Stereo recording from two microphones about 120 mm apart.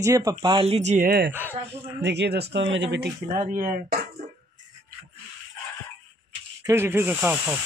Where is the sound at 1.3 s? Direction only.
20° right (ahead or behind).